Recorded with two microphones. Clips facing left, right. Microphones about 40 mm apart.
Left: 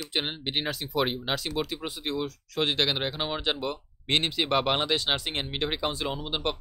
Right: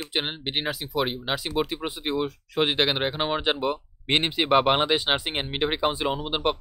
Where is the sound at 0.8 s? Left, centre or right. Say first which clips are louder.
Right 1 dB; centre.